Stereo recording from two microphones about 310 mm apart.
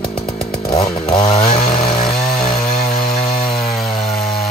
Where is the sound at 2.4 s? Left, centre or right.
Centre.